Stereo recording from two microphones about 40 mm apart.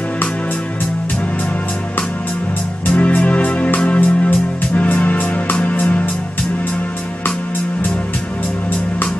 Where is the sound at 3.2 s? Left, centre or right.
Left.